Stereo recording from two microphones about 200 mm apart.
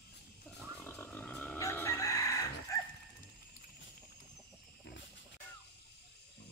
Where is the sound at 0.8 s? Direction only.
10° left (ahead or behind).